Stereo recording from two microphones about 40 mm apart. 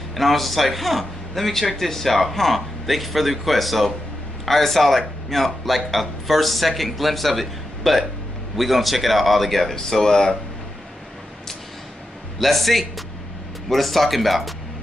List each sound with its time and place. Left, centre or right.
0.1 s a man's voice: centre
12.4 s a man's voice: centre